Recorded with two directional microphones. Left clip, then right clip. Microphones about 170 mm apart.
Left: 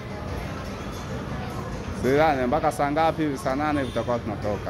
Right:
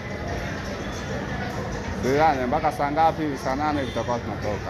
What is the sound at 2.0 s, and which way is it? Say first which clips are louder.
Speech: even; 45° left (ahead or behind).